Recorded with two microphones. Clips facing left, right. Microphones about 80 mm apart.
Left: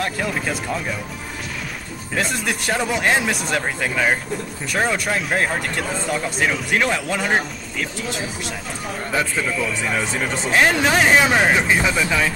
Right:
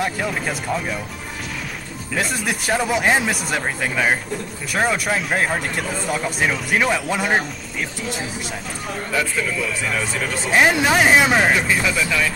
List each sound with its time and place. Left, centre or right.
0.0 s speech: centre
2.1 s speech: centre
9.1 s a man's voice: left
10.5 s speech: centre
11.5 s a man's voice: left